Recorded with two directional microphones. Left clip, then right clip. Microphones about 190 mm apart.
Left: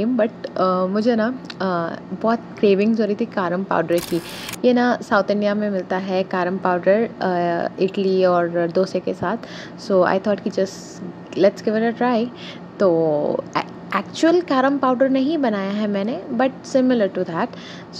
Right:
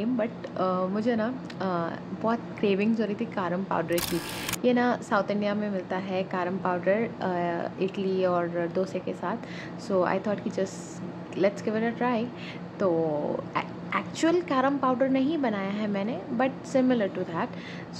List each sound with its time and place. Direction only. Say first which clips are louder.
0.0 s a woman's voice: left 9 dB; 30° left (ahead or behind)
3.9 s speech: left 7 dB; centre (ahead or behind)
4.6 s a woman's voice: left 8 dB; 25° left (ahead or behind)